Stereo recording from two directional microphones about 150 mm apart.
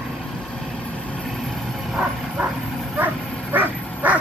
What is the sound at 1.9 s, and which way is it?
Bow-wow, 5° right (ahead or behind).